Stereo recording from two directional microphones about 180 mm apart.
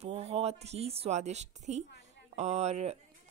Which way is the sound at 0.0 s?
35° right (ahead or behind).